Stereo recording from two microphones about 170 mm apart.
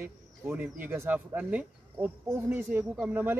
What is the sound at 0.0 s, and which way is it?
Speech, 15° right (ahead or behind).